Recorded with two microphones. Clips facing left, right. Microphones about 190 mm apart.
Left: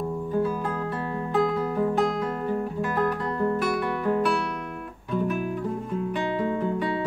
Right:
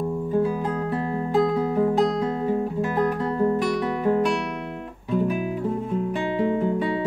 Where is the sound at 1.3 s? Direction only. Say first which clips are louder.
Right 3 dB; 20° right (ahead or behind).